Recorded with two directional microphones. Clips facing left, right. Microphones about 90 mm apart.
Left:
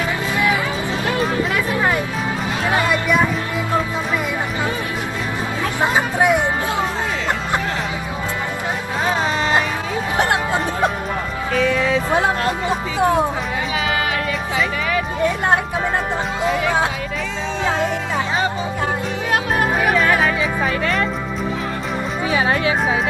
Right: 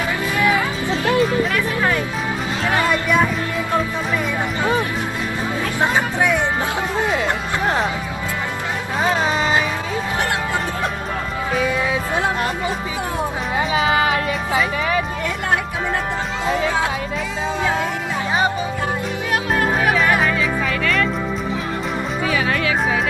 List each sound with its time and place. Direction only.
2.6 s a sound: 20° left (ahead or behind)
5.6 s music: 15° left (ahead or behind)
9.0 s music: centre (ahead or behind)
10.1 s a sound: 20° left (ahead or behind)
11.5 s music: 15° right (ahead or behind)
13.7 s music: 30° right (ahead or behind)
20.6 s music: 30° left (ahead or behind)
22.2 s music: 25° left (ahead or behind)